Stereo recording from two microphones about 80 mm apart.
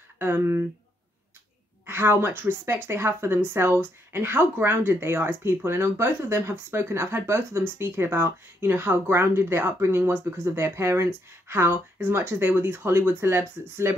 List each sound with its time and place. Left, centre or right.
0.2 s a woman's voice: right
1.9 s a woman's voice: right